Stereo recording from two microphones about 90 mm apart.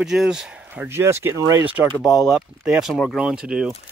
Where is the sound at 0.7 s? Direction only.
25° right (ahead or behind).